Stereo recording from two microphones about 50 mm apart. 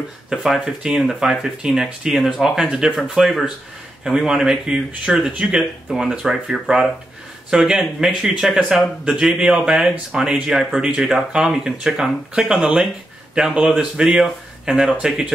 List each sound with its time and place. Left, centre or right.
0.3 s speech: centre
3.2 s speech: centre
4.0 s speech: centre
7.8 s speech: centre
8.5 s speech: centre
10.5 s speech: centre